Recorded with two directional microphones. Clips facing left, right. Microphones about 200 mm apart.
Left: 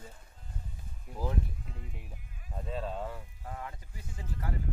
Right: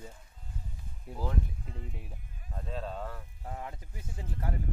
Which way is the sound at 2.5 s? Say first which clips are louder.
Left 2 dB; 5° left (ahead or behind).